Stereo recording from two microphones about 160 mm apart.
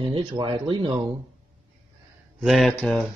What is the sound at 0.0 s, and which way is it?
Speech, 25° right (ahead or behind).